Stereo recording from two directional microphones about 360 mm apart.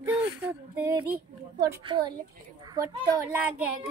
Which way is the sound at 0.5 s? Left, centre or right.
Centre.